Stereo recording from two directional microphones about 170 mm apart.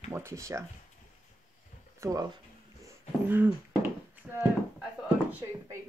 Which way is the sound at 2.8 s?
10° right (ahead or behind).